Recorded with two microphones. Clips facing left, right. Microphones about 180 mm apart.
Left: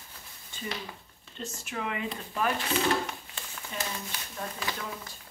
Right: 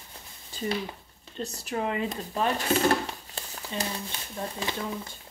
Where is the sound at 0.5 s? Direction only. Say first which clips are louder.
Right 7 dB; 35° right (ahead or behind).